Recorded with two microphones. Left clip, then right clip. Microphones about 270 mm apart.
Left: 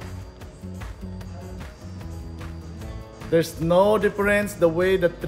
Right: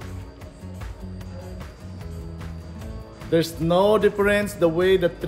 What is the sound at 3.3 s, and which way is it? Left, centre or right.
A man's voice, centre.